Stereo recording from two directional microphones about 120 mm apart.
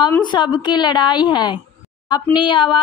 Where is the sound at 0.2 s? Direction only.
40° left (ahead or behind).